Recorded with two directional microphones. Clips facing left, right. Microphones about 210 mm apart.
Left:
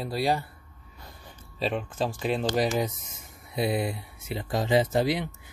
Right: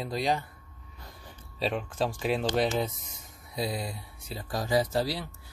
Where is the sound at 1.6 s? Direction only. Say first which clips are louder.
Left 1 dB; centre (ahead or behind).